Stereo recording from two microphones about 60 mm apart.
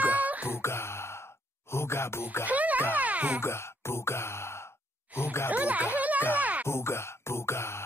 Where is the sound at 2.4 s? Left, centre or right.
Right.